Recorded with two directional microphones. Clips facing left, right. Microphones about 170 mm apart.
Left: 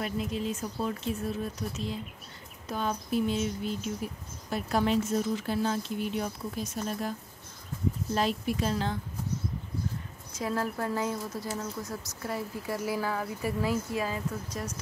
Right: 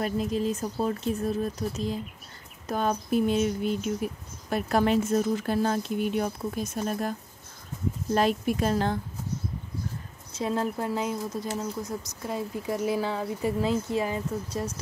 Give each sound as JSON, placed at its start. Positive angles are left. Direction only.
{"t": 0.0, "sound": "a woman's voice", "side_deg": -40}
{"t": 10.3, "sound": "speech", "side_deg": -25}